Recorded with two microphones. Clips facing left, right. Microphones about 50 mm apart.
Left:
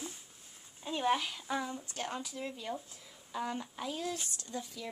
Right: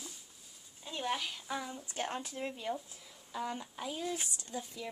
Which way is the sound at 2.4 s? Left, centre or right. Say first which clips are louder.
Right 1 dB; right.